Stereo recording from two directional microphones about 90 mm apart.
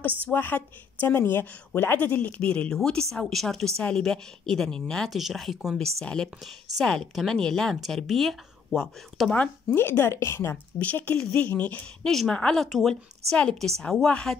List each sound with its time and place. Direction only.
0.0 s a woman's voice: 20° left (ahead or behind)
10.8 s speech: 20° left (ahead or behind)
12.1 s speech: 5° left (ahead or behind)